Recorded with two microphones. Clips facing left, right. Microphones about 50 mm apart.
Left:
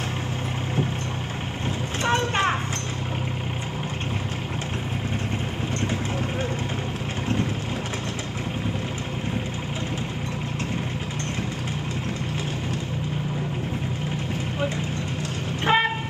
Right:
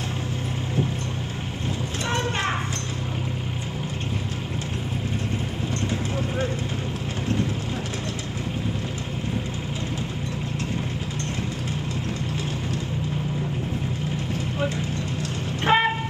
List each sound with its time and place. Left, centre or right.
2.0 s a sound: left
6.1 s vehicle: left
15.6 s wind instrument: centre